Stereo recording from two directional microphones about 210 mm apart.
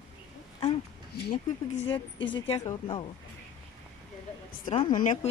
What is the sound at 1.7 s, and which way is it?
Speech, 25° left (ahead or behind).